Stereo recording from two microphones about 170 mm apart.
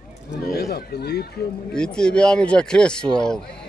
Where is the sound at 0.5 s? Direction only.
65° left (ahead or behind).